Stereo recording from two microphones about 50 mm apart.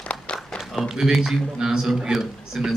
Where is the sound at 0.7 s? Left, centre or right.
Centre.